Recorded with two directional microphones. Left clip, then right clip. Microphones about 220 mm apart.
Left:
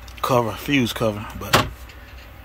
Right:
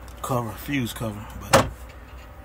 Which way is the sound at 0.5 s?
15° left (ahead or behind).